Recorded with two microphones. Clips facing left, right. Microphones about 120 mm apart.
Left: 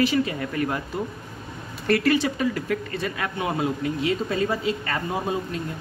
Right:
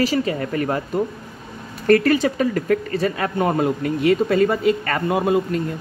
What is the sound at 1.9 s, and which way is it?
Speech, 45° right (ahead or behind).